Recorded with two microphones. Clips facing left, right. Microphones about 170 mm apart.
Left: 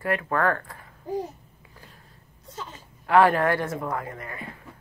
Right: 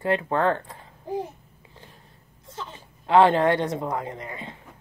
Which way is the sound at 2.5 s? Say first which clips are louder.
Right 1 dB; 25° right (ahead or behind).